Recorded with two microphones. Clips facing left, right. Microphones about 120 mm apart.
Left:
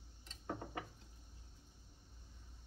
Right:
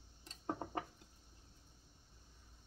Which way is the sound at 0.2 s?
40° right (ahead or behind).